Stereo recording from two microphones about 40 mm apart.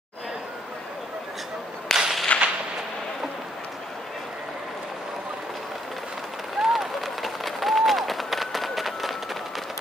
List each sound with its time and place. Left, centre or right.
1.9 s whip: centre
2.3 s artillery fire: left
6.6 s applause: centre